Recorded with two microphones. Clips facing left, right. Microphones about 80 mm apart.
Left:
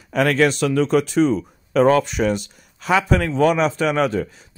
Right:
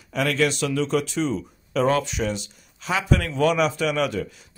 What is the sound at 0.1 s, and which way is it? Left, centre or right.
Speech, left.